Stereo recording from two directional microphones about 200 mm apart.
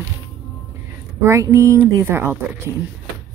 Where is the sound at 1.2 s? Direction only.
15° right (ahead or behind).